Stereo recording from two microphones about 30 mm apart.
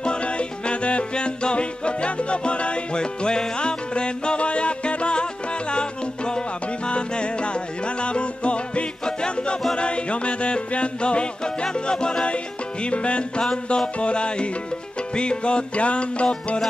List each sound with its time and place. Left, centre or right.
0.0 s music: left
13.4 s music: left
13.9 s music: left